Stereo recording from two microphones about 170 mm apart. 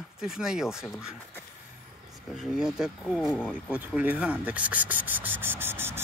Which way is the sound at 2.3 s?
5° right (ahead or behind).